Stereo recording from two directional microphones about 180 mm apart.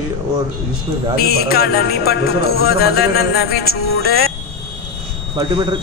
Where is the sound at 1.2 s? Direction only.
60° left (ahead or behind).